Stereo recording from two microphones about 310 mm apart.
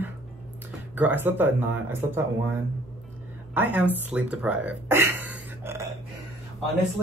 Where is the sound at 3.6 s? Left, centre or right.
Centre.